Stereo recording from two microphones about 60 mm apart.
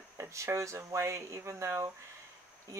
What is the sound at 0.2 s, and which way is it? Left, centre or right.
Speech, right.